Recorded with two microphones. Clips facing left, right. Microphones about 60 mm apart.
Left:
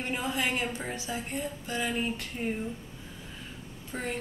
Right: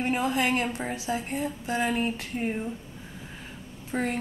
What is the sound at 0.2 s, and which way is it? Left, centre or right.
A woman's voice, centre.